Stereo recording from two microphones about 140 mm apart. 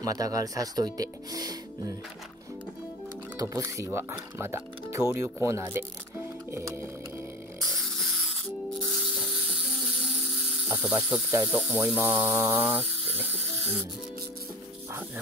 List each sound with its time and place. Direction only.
0.0 s speech: 25° right (ahead or behind)
3.3 s speech: 25° right (ahead or behind)
6.5 s music: 20° right (ahead or behind)
10.7 s music: 10° right (ahead or behind)